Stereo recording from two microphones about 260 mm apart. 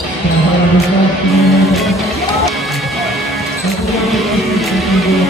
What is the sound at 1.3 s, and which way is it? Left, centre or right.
Music, centre.